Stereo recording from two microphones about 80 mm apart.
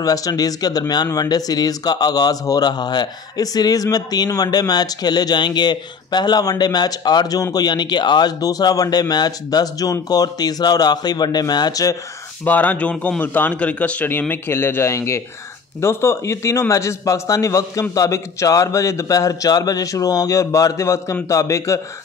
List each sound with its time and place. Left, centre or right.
0.0 s speech: left
12.4 s a man's voice: centre; by 21.8 s left